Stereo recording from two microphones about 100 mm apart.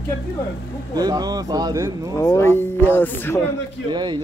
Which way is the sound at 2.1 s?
30° left (ahead or behind).